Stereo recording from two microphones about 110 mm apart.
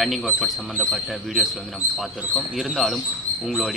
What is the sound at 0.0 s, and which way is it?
Speech, centre (ahead or behind).